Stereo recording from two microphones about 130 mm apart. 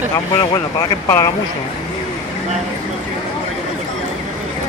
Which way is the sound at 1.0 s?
25° left (ahead or behind).